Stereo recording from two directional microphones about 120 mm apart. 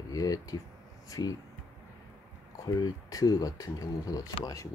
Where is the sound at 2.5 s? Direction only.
30° left (ahead or behind).